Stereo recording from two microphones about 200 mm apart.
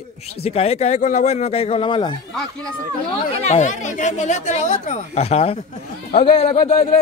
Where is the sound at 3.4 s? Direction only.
35° left (ahead or behind).